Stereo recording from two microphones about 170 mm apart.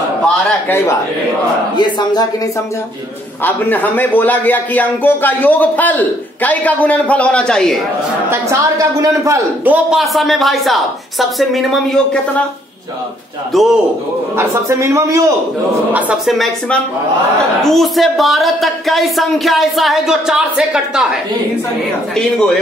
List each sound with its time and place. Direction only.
0.2 s a man's voice: 15° left (ahead or behind)
1.8 s speech: 25° left (ahead or behind)
3.4 s a man's voice: 10° left (ahead or behind)
8.3 s a man's voice: 20° right (ahead or behind)
9.8 s speech: centre (ahead or behind)
13.5 s speech: centre (ahead or behind)
14.3 s a man's voice: 15° right (ahead or behind)
15.9 s speech: 5° right (ahead or behind)